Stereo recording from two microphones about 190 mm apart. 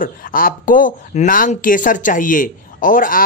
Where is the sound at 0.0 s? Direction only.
45° left (ahead or behind).